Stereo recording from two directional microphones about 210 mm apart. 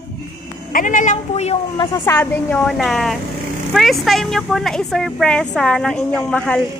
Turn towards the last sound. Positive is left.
turn(degrees=5)  # may be behind; listen again after turning